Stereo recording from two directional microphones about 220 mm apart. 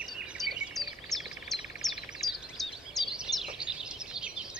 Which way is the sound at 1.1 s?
15° left (ahead or behind).